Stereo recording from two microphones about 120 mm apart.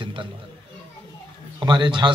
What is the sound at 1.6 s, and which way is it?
Speech, 40° right (ahead or behind).